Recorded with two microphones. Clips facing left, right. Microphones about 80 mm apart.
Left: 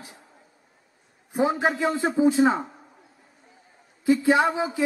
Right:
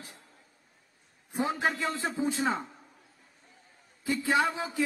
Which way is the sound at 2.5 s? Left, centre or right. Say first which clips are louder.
Left 5 dB; left.